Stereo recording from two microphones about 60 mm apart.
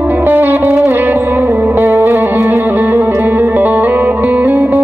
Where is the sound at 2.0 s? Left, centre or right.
Right.